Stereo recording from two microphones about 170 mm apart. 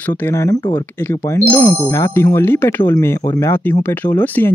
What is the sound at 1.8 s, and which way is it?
Speech, 15° left (ahead or behind).